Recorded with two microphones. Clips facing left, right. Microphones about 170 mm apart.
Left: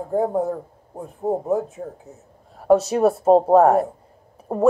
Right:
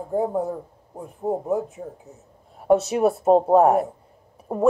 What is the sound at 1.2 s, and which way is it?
Speech, 15° left (ahead or behind).